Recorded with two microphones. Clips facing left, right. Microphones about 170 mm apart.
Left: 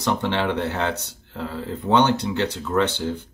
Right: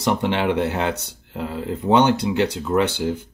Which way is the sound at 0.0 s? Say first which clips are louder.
Right 2 dB; 15° right (ahead or behind).